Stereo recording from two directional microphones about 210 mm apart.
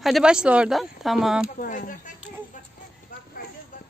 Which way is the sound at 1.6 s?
40° left (ahead or behind).